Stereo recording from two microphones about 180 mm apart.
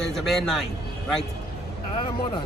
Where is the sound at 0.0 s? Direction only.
Centre (ahead or behind).